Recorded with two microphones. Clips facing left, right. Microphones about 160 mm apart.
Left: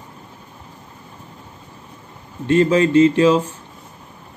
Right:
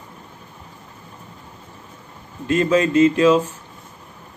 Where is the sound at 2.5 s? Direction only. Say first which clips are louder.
Left 3 dB; 30° left (ahead or behind).